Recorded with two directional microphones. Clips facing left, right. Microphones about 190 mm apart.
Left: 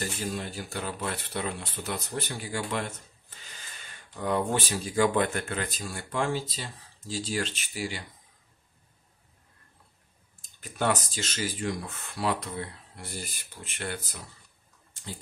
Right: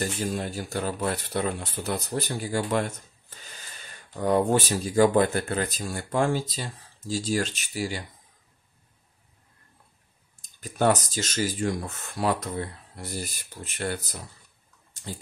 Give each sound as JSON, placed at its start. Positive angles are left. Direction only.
{"t": 0.4, "sound": "speech", "side_deg": -40}
{"t": 4.1, "sound": "speech", "side_deg": -40}
{"t": 10.4, "sound": "speech", "side_deg": -40}
{"t": 15.0, "sound": "a sound", "side_deg": -40}